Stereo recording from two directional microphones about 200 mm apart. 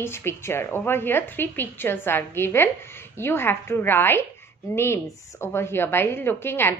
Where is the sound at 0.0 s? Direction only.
10° left (ahead or behind).